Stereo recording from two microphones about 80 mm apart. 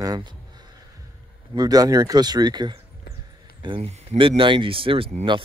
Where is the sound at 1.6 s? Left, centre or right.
Right.